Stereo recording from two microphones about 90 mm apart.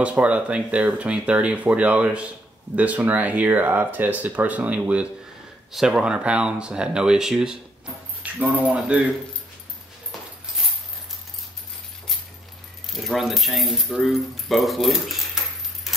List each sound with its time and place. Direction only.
0.0 s speech: 15° right (ahead or behind)
12.9 s speech: centre (ahead or behind)